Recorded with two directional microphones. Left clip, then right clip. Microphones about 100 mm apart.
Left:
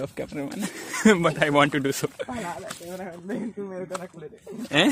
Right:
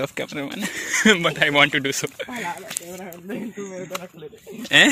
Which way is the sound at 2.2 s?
30° left (ahead or behind).